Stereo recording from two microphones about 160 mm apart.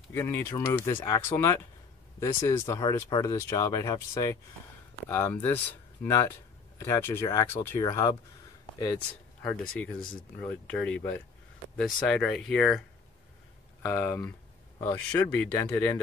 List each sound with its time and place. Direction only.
0.1 s speech: 15° left (ahead or behind)
9.4 s speech: 10° left (ahead or behind)
13.8 s speech: 15° left (ahead or behind)